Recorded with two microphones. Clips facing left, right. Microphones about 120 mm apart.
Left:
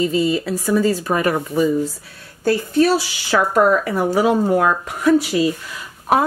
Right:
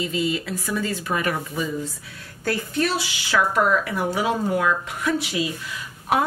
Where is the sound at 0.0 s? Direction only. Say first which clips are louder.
Left 7 dB; 35° left (ahead or behind).